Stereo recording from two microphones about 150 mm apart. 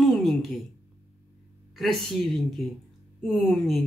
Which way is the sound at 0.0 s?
Centre (ahead or behind).